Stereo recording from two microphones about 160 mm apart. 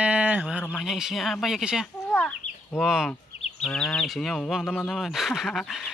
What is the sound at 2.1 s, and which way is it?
Speech, 5° left (ahead or behind).